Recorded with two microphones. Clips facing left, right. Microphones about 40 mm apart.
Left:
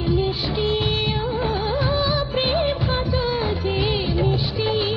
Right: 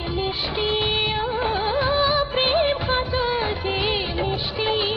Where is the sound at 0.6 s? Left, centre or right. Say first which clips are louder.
Right 1 dB; right.